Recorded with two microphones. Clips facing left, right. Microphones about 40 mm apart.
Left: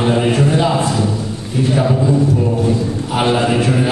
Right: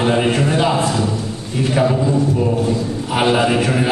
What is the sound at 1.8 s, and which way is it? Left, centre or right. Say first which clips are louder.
Mantra: even; centre.